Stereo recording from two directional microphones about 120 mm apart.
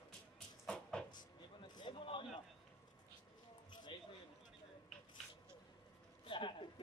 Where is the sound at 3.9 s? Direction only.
40° left (ahead or behind).